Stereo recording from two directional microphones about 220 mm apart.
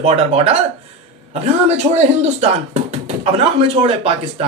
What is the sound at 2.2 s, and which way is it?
Speech, 30° right (ahead or behind).